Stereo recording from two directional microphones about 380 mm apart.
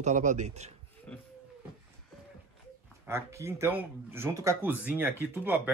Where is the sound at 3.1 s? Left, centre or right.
Centre.